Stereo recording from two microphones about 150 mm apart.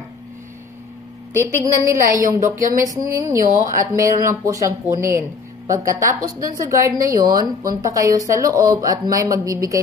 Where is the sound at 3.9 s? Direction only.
20° right (ahead or behind).